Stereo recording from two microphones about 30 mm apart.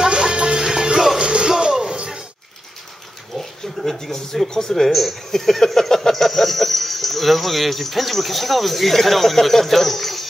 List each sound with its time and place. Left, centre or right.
0.2 s music: right
1.2 s music: right
1.5 s music: right
3.3 s a sound: centre
4.0 s speech: centre
5.3 s cricket: centre